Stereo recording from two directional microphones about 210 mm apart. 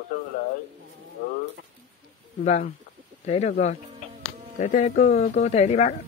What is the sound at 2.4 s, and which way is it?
Speech, 35° left (ahead or behind).